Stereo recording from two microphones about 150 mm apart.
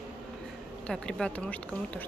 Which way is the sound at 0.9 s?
5° left (ahead or behind).